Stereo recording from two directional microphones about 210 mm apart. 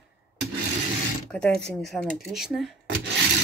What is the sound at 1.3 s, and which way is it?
Speech, 5° left (ahead or behind).